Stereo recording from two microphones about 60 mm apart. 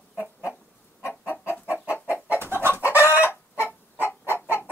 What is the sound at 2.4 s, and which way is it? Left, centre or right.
Chicken, right.